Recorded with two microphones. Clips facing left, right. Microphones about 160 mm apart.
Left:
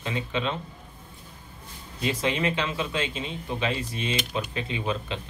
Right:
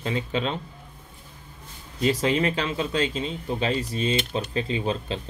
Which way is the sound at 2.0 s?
35° right (ahead or behind).